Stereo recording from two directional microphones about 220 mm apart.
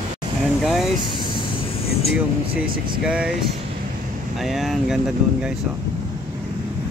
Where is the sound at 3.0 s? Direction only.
5° right (ahead or behind).